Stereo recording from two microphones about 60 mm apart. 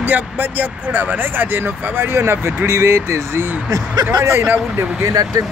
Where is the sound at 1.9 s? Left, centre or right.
Right.